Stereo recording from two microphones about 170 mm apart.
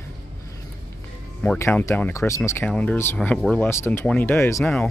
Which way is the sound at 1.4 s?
10° left (ahead or behind).